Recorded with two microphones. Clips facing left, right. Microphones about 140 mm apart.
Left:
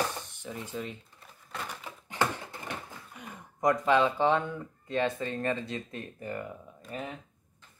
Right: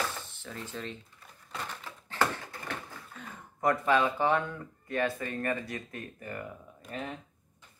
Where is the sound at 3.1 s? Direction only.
20° left (ahead or behind).